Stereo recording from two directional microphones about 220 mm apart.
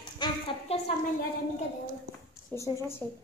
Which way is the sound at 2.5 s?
10° left (ahead or behind).